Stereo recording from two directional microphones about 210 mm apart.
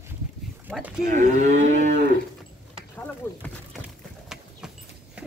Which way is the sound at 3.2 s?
10° left (ahead or behind).